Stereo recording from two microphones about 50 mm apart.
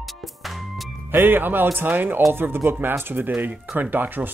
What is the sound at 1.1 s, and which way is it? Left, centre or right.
Speech, right.